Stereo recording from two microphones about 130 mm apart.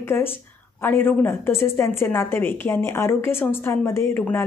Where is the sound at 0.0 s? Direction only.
15° left (ahead or behind).